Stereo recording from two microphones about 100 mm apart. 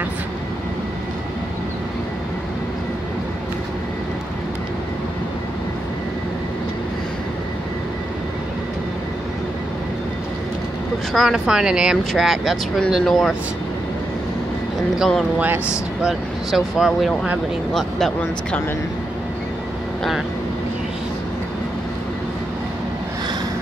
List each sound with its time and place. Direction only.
11.1 s speech: 5° right (ahead or behind)
15.3 s speech: 20° right (ahead or behind)
16.0 s speech: 5° right (ahead or behind)